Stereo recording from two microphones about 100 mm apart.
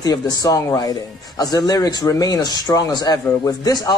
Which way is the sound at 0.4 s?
35° left (ahead or behind).